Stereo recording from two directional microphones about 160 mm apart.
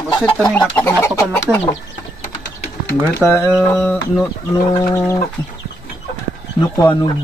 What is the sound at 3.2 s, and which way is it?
Speech, 15° left (ahead or behind).